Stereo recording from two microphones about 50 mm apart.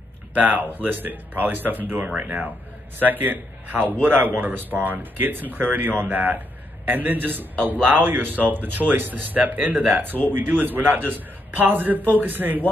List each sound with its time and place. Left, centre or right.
0.3 s speech: right